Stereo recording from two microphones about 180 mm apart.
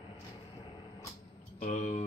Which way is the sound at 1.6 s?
45° left (ahead or behind).